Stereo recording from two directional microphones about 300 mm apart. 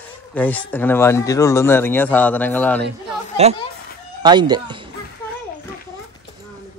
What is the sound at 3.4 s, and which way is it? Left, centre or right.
A child's voice, right.